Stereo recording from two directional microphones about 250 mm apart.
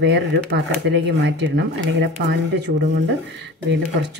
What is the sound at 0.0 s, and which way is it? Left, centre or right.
Speech, right.